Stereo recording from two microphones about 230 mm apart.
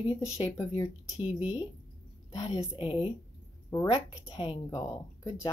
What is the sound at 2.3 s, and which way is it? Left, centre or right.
Speech, centre.